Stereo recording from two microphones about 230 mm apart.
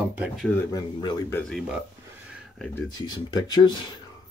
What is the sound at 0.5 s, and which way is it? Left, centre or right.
Speech, centre.